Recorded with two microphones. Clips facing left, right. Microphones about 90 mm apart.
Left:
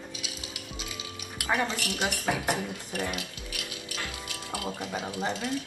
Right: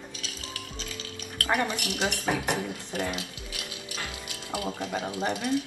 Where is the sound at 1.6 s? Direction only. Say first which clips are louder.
Right 1 dB; 20° right (ahead or behind).